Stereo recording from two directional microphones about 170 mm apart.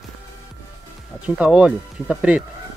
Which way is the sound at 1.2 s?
5° right (ahead or behind).